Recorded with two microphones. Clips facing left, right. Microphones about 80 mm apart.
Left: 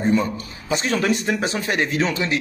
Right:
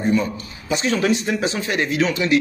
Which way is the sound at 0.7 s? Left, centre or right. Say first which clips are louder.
Right 1 dB; left.